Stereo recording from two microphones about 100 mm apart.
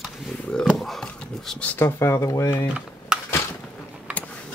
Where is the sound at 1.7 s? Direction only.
25° left (ahead or behind).